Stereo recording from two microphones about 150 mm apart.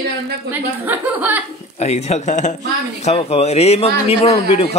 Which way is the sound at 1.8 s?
45° left (ahead or behind).